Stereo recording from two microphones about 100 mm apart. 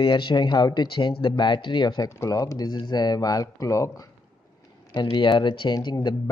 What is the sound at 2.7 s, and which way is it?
Speech, 45° left (ahead or behind).